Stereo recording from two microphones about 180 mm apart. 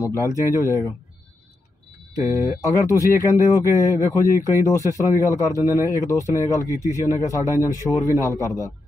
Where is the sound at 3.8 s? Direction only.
15° left (ahead or behind).